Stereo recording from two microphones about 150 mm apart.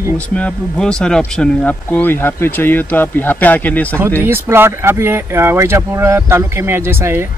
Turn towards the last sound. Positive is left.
turn(degrees=-15)  # may be behind; listen again after turning